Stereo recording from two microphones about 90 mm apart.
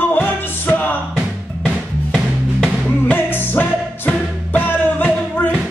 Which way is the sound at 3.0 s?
25° left (ahead or behind).